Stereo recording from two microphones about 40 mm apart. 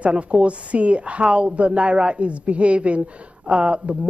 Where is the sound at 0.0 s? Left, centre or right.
Right.